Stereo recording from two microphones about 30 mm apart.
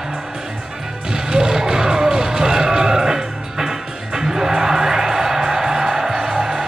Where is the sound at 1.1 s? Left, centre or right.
Right.